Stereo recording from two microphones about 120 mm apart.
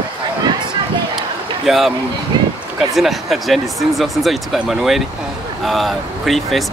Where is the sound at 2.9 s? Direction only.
Centre (ahead or behind).